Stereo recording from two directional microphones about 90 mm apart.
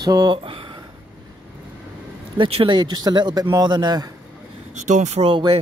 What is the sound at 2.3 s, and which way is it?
Speech, 75° right (ahead or behind).